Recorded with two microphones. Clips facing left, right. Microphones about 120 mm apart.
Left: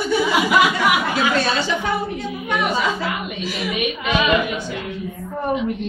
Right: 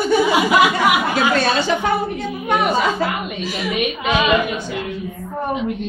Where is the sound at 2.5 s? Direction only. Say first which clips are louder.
Right 4 dB; 50° right (ahead or behind).